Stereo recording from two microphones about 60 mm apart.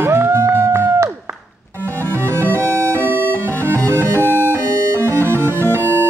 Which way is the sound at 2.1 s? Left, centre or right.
Right.